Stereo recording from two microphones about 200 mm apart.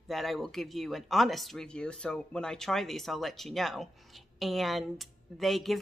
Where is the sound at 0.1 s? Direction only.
Centre (ahead or behind).